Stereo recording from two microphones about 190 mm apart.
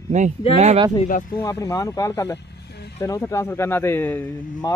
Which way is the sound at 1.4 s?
15° left (ahead or behind).